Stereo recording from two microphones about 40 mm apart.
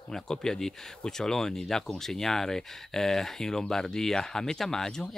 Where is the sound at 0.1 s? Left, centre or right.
Centre.